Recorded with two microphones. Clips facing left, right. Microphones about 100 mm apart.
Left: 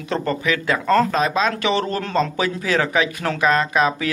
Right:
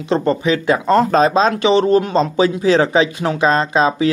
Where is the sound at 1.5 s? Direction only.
20° right (ahead or behind).